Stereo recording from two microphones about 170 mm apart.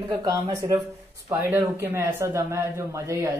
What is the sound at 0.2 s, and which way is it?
Speech, 20° right (ahead or behind).